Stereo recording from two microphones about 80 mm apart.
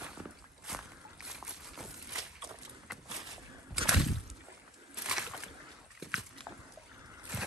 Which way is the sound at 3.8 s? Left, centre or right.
Centre.